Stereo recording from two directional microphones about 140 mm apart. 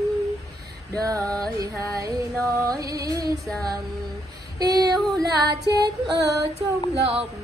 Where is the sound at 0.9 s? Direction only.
25° right (ahead or behind).